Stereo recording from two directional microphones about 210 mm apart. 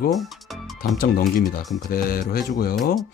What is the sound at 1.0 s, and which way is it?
Music, 45° left (ahead or behind).